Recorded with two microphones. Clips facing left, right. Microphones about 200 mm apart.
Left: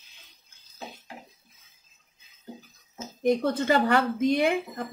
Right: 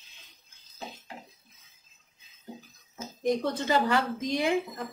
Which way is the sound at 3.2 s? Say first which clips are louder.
Left 4 dB; 60° left (ahead or behind).